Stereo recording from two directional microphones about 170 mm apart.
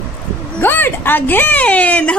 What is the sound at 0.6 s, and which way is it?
A woman's voice, 10° left (ahead or behind).